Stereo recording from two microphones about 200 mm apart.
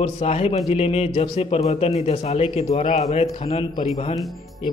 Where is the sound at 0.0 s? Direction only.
30° left (ahead or behind).